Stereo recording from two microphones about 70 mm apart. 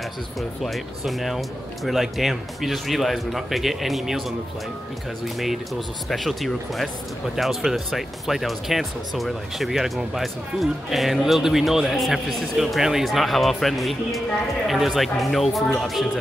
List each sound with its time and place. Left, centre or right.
0.4 s speech: centre
5.2 s speech: centre